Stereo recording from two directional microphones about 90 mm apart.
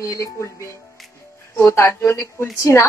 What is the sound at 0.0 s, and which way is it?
Speech, 35° left (ahead or behind).